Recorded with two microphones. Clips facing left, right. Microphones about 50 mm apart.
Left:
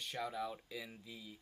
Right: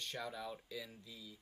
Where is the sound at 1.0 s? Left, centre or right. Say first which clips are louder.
Left 2 dB; left.